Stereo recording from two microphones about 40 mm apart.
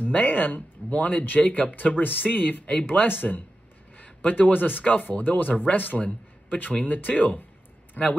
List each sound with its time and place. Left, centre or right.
0.0 s a man's voice: left
1.8 s speech: left
4.0 s a man's voice: left